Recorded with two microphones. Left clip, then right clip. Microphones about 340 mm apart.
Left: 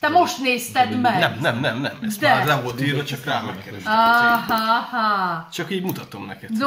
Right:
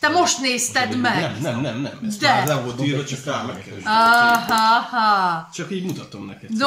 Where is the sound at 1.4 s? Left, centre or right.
Left.